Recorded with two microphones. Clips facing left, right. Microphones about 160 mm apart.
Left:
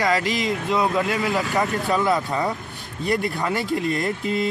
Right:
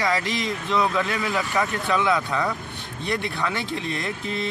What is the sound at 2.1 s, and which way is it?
Speech, 20° left (ahead or behind).